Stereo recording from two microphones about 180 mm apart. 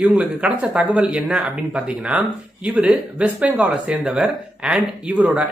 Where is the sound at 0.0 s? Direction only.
10° right (ahead or behind).